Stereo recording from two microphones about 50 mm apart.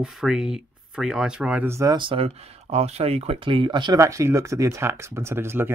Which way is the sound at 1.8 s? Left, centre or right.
Right.